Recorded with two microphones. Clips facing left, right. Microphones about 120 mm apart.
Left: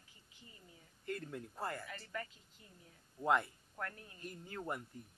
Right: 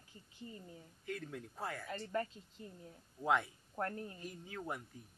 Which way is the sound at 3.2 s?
Centre (ahead or behind).